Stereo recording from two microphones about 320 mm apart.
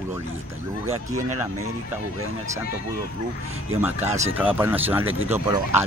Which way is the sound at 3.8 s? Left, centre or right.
Centre.